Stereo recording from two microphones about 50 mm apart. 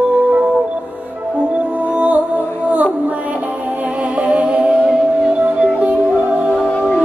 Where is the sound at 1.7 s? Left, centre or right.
Right.